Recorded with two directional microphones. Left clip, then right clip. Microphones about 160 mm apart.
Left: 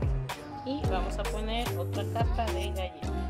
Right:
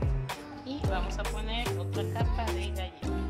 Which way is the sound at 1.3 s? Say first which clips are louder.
Left 2 dB; 40° left (ahead or behind).